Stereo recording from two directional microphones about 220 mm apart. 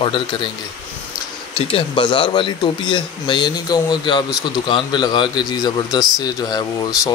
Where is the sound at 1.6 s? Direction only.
25° left (ahead or behind).